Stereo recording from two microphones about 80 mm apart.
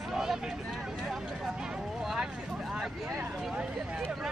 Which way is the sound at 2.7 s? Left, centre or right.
Centre.